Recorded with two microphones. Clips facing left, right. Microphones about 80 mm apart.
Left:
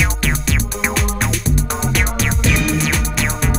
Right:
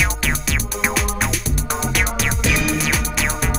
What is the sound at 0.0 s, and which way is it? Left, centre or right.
Music, centre.